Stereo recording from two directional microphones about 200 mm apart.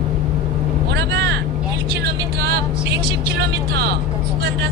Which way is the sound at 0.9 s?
55° right (ahead or behind).